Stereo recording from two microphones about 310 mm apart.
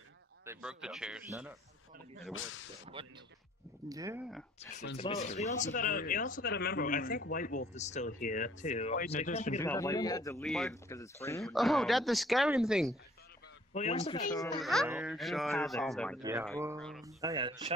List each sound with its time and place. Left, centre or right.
0.5 s speech: centre
2.3 s speech: left
2.8 s speech: centre
4.9 s speech: left
9.6 s speech: centre
13.7 s speech: left
14.6 s speech: centre
16.2 s speech: centre